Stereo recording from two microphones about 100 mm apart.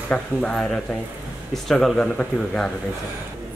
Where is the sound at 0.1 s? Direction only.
10° left (ahead or behind).